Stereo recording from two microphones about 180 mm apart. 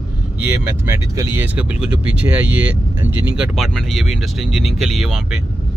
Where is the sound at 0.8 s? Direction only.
15° right (ahead or behind).